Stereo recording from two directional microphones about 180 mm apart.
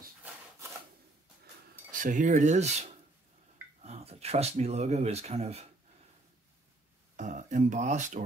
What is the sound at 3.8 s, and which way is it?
Speech, 35° right (ahead or behind).